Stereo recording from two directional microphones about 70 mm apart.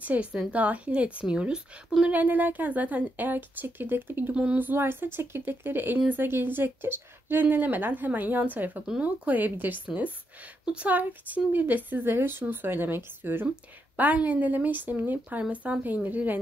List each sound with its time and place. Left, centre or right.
0.0 s speech: right
4.4 s speech: centre
4.6 s speech: right